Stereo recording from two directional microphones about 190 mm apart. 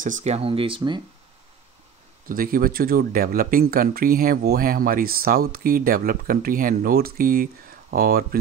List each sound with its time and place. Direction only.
0.0 s speech: 40° right (ahead or behind)
2.2 s speech: 50° right (ahead or behind)